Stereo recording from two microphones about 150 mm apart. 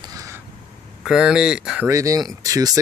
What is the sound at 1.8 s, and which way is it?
Speech, 20° right (ahead or behind).